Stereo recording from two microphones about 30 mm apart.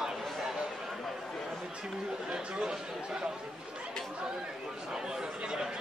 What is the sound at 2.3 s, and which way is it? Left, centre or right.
Chatter, right.